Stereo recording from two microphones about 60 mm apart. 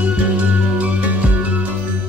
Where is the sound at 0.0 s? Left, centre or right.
Right.